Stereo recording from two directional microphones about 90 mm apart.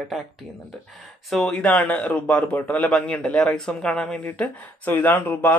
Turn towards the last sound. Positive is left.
turn(degrees=20)  # may be behind; listen again after turning